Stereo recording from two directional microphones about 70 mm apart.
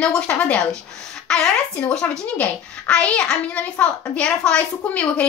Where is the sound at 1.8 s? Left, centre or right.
Centre.